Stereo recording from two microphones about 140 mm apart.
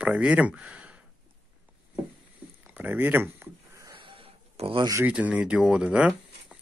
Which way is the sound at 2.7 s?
15° right (ahead or behind).